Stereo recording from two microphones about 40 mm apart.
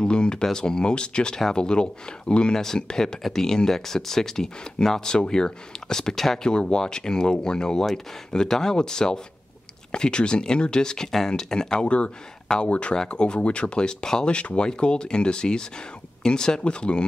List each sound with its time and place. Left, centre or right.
0.0 s speech: left
6.5 s speech: left
12.6 s speech: left
12.9 s speech: left